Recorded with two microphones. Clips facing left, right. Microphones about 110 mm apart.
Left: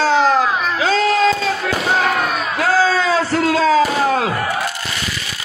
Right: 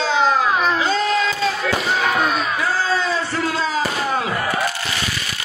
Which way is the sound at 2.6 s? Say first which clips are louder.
Left 9 dB; 90° left.